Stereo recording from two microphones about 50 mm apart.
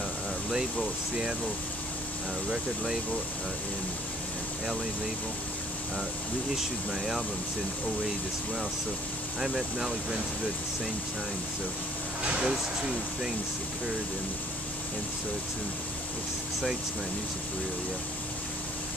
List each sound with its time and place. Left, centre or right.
0.5 s speech: centre
2.5 s speech: centre
6.9 s speech: centre
9.4 s speech: centre
12.2 s speech: centre